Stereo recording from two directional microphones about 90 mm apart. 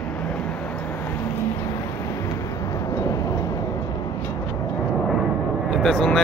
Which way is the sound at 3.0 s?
40° left (ahead or behind).